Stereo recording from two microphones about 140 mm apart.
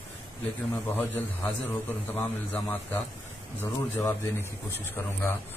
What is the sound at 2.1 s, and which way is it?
Speech, 15° left (ahead or behind).